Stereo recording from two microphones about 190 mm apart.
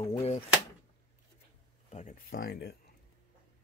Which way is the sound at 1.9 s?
45° left (ahead or behind).